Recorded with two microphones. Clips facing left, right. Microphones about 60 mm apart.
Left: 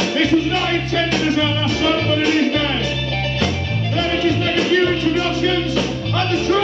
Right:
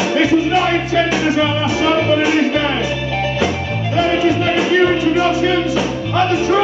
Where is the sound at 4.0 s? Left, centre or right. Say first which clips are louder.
Right 4 dB; centre.